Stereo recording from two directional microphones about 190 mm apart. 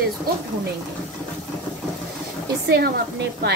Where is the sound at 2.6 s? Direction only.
55° right (ahead or behind).